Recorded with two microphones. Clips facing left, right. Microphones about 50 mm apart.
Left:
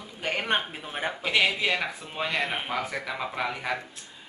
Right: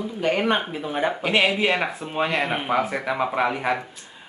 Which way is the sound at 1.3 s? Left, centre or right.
Centre.